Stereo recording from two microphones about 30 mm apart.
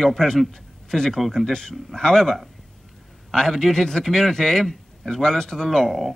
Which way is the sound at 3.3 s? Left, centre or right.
Centre.